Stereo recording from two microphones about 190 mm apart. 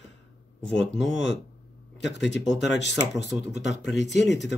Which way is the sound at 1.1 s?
75° left (ahead or behind).